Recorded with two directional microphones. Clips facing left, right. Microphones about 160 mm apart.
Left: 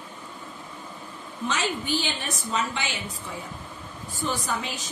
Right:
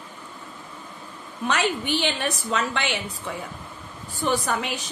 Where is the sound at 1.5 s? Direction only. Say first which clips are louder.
Right 4 dB; 65° right (ahead or behind).